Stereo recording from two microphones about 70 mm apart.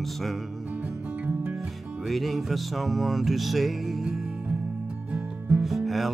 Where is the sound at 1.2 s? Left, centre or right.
Right.